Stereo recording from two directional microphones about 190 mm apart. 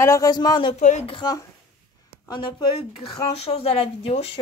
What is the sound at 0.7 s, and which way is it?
Speech, 40° left (ahead or behind).